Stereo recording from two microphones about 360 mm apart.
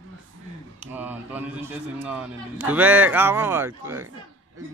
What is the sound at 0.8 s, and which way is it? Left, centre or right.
Speech, centre.